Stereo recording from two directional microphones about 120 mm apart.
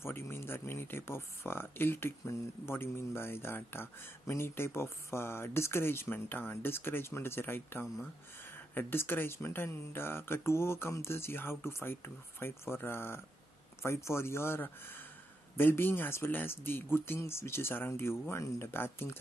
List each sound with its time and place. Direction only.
0.0 s speech: 20° left (ahead or behind)